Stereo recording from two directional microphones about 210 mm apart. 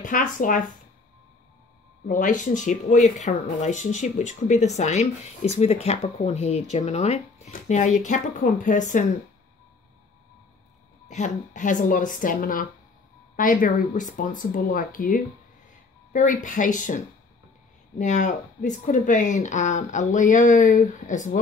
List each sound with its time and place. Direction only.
0.0 s speech: 40° left (ahead or behind)
2.0 s speech: 40° left (ahead or behind)
11.1 s speech: 35° left (ahead or behind)